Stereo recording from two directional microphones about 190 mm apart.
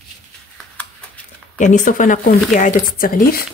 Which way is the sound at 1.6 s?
40° left (ahead or behind).